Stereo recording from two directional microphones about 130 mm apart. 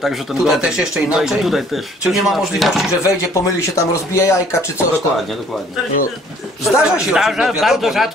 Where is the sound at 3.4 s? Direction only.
20° left (ahead or behind).